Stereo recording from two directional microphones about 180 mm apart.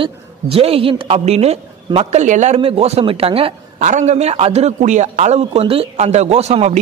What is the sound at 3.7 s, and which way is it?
A woman's voice, 40° right (ahead or behind).